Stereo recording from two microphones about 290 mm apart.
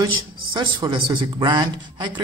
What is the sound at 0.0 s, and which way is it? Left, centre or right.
A man's voice, centre.